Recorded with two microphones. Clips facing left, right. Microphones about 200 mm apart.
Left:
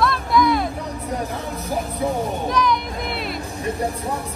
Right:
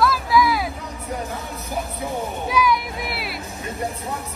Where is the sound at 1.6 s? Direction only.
30° left (ahead or behind).